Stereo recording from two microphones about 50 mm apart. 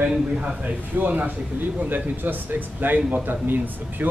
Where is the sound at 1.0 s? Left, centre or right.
Right.